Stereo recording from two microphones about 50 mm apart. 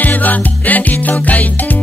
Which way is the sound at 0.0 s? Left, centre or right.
Left.